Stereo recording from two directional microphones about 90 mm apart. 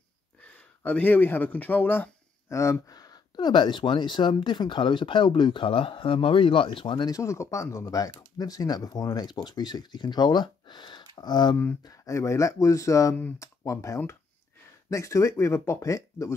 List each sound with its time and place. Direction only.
0.4 s speech: 15° left (ahead or behind)
2.5 s speech: 35° left (ahead or behind)
2.9 s speech: 50° left (ahead or behind); by 7.1 s 70° left (ahead or behind)
7.1 s speech: 35° left (ahead or behind); by 11.5 s 55° left (ahead or behind)
11.8 s speech: 40° left (ahead or behind)
13.1 s speech: 20° left (ahead or behind)
13.7 s speech: 35° left (ahead or behind)